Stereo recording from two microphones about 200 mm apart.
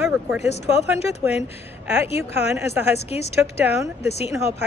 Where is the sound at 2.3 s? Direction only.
10° right (ahead or behind).